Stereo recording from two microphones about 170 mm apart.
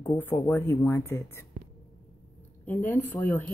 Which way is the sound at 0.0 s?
10° left (ahead or behind).